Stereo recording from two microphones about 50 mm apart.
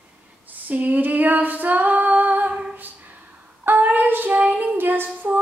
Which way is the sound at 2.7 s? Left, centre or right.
Right.